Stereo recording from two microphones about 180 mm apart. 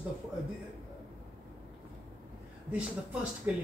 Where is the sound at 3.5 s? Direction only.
10° right (ahead or behind).